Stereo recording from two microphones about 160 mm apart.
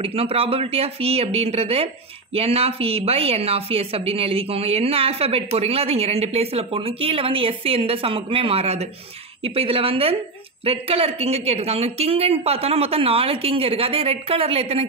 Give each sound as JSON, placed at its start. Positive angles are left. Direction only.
{"t": 0.0, "sound": "a woman's voice", "side_deg": -35}